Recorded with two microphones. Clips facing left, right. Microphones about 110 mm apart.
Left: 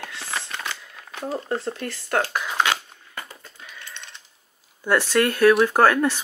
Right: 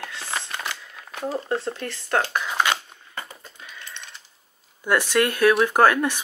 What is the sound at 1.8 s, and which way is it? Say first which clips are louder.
Speech: even; 20° right (ahead or behind).